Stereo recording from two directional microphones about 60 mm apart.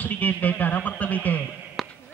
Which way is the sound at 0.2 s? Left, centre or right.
Left.